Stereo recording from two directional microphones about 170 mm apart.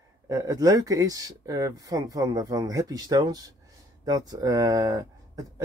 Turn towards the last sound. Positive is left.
turn(degrees=-20)  # may be behind; listen again after turning